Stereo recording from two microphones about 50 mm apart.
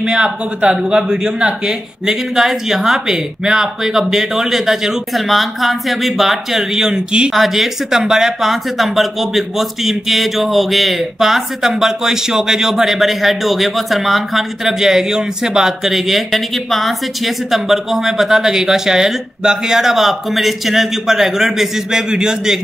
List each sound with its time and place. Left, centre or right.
0.0 s speech: centre
7.3 s speech: centre